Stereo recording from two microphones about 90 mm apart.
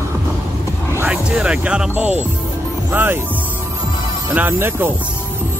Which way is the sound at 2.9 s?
25° right (ahead or behind).